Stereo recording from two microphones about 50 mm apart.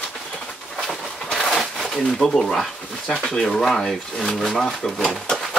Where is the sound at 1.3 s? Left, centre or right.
Centre.